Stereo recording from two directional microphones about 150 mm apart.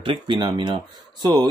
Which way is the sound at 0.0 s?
30° right (ahead or behind).